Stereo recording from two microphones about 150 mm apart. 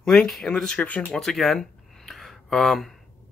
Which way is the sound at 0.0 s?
Centre (ahead or behind).